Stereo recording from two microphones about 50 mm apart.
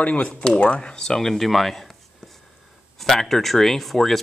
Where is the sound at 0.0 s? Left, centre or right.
Left.